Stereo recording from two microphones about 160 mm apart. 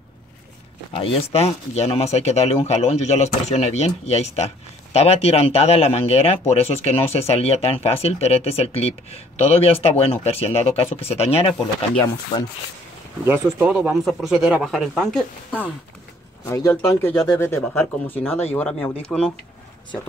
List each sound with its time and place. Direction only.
0.9 s speech: 35° left (ahead or behind)
13.2 s speech: 15° right (ahead or behind); by 15.7 s 5° left (ahead or behind)
16.4 s speech: 20° left (ahead or behind)